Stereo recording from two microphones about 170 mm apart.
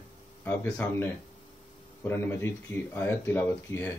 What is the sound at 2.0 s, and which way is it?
Speech, 15° left (ahead or behind).